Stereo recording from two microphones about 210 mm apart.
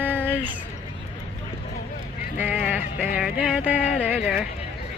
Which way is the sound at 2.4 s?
10° right (ahead or behind).